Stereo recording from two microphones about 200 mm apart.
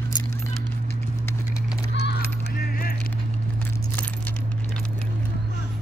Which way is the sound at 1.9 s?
55° left (ahead or behind).